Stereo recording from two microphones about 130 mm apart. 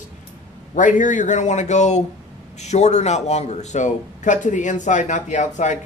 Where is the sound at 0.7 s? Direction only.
75° left (ahead or behind).